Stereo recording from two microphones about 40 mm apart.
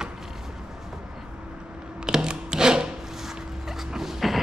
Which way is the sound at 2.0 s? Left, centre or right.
Centre.